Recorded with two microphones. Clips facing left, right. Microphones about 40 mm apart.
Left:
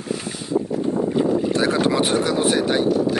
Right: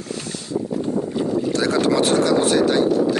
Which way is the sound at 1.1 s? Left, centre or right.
Centre.